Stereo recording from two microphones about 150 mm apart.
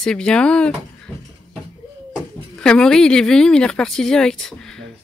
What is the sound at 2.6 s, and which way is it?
Speech, 5° left (ahead or behind).